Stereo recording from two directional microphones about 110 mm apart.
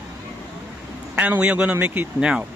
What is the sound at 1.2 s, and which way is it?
Speech, 15° right (ahead or behind).